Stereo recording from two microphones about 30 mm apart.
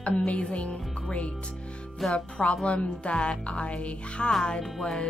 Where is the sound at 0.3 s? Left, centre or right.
Left.